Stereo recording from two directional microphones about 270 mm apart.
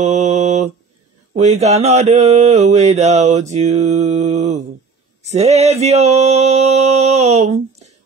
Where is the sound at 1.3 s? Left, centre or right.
Right.